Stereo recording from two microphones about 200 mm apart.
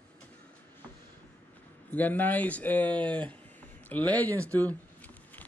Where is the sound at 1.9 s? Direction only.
10° left (ahead or behind).